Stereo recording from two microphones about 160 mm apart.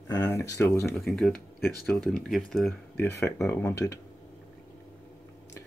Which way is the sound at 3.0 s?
15° left (ahead or behind).